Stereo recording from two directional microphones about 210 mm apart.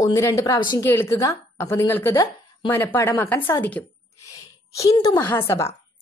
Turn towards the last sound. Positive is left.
turn(degrees=10)  # may be behind; listen again after turning